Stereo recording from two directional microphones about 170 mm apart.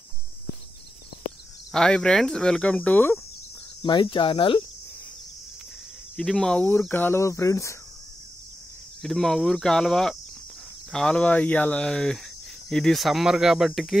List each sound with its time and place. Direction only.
1.7 s speech: 5° left (ahead or behind)
3.8 s speech: 25° left (ahead or behind)
6.1 s speech: centre (ahead or behind)
9.0 s speech: centre (ahead or behind)